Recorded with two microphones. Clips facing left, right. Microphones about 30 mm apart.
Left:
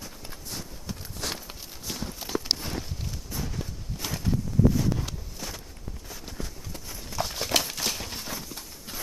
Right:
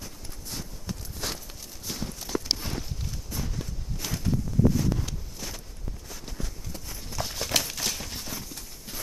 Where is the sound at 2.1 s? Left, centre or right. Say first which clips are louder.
Left 1 dB; centre.